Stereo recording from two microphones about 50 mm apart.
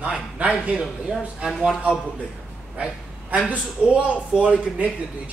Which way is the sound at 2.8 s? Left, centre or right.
Right.